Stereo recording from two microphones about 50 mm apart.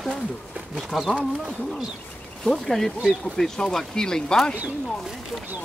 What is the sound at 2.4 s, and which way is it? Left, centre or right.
Speech, centre.